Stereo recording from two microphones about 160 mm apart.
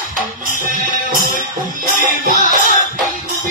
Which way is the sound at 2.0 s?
60° right (ahead or behind).